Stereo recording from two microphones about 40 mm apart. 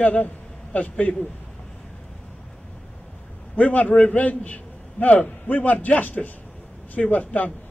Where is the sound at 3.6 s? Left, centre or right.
Left.